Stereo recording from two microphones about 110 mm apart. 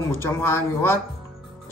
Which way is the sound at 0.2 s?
20° left (ahead or behind).